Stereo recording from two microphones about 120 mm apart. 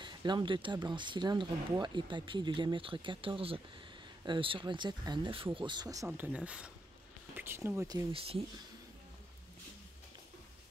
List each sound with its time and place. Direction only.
0.0 s speech: 40° right (ahead or behind)
6.0 s speech: 15° right (ahead or behind)
8.1 s speech: 55° right (ahead or behind)